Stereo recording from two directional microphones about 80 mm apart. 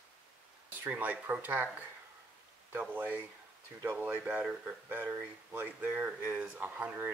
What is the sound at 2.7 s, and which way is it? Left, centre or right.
Speech, right.